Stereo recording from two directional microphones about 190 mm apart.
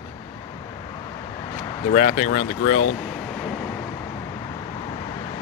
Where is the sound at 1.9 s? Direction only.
40° left (ahead or behind).